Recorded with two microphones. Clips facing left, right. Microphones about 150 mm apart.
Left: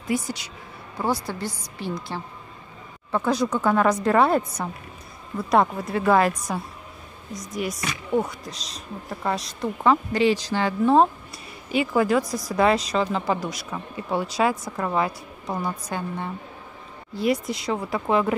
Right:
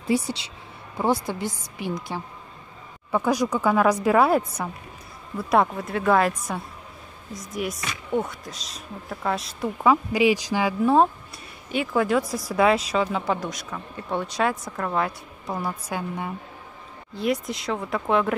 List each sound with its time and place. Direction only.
0.0 s speech: 30° right (ahead or behind)
1.0 s a woman's voice: 20° right (ahead or behind)
5.5 s speech: centre (ahead or behind)